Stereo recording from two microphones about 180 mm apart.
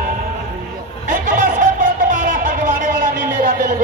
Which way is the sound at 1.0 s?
45° right (ahead or behind).